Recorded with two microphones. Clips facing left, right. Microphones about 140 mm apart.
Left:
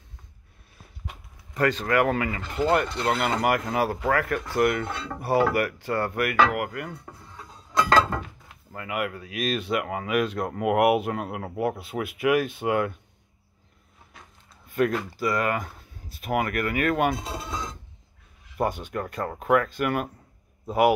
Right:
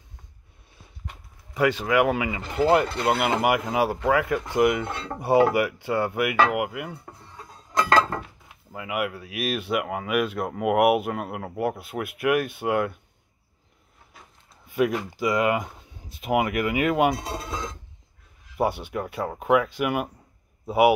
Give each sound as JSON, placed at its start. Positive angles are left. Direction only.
{"t": 1.5, "sound": "speech", "side_deg": -10}
{"t": 2.7, "sound": "speech", "side_deg": -20}
{"t": 8.2, "sound": "speech", "side_deg": -5}
{"t": 14.7, "sound": "speech", "side_deg": -15}
{"t": 17.5, "sound": "speech", "side_deg": 0}